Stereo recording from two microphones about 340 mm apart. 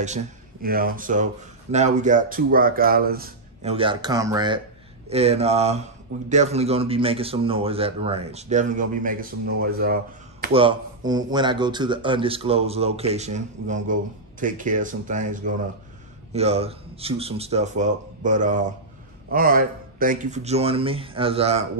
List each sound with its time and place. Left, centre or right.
0.0 s speech: right
10.4 s speech: centre